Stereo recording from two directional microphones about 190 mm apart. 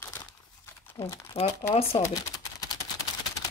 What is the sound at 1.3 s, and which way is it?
Speech, 35° left (ahead or behind).